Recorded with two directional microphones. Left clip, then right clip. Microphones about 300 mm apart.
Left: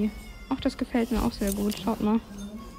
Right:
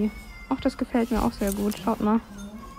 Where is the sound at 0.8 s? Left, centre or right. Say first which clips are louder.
Right 3 dB; centre.